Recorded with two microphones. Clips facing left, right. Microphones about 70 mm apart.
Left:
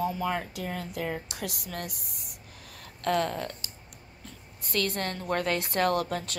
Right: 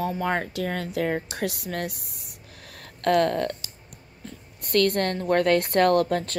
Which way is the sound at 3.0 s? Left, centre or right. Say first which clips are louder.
Right 7 dB; right.